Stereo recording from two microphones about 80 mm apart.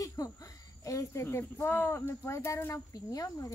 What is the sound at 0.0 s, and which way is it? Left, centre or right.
A woman's voice, left.